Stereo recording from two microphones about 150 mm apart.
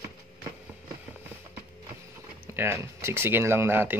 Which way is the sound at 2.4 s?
15° right (ahead or behind).